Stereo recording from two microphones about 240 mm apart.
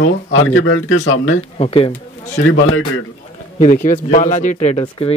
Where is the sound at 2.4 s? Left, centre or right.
Left.